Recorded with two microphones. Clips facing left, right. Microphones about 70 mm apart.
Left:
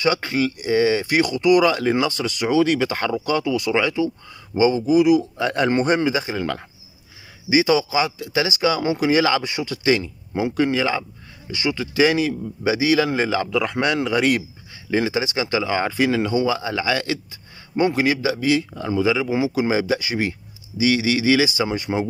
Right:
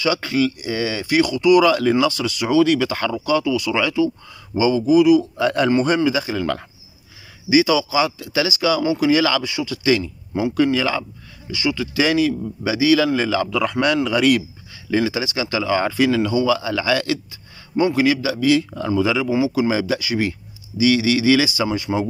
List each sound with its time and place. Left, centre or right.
0.0 s speech: left
3.7 s speech: left
5.7 s speech: left; by 6.6 s centre
7.4 s speech: left
9.4 s speech: left
11.5 s speech: left
15.5 s speech: left
16.8 s speech: left
17.7 s speech: left; by 19.2 s centre
19.2 s speech: left
21.6 s speech: left